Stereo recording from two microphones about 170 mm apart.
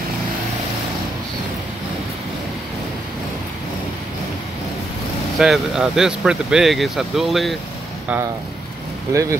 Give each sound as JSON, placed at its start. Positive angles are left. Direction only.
{"t": 5.4, "sound": "speech", "side_deg": -5}
{"t": 9.1, "sound": "speech", "side_deg": -20}